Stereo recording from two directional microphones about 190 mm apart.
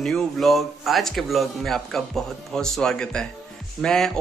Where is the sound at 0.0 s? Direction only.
Centre (ahead or behind).